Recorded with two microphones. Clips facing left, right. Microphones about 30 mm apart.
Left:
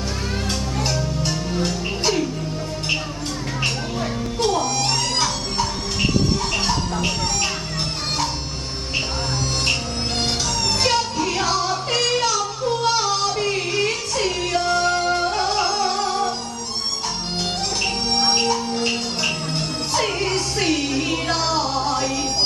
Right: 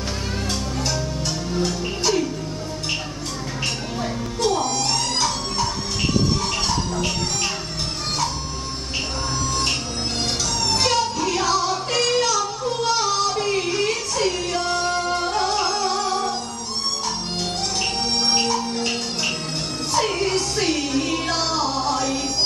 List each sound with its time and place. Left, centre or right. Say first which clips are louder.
1.2 s music: left 1 dB; left
1.7 s music: even; centre
5.2 s music: even; centre
10.7 s music: even; centre
18.3 s music: even; centre
19.9 s music: right 1 dB; centre